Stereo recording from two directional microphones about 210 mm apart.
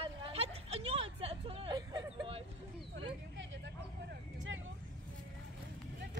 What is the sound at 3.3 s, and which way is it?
Vehicle, 60° right (ahead or behind).